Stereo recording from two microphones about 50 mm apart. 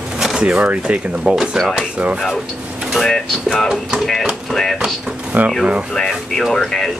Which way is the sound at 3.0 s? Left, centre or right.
Centre.